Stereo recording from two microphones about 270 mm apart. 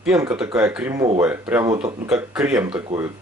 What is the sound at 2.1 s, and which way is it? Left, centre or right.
Speech, centre.